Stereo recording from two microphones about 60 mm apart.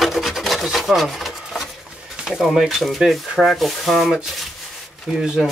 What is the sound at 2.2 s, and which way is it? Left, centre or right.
Speech, centre.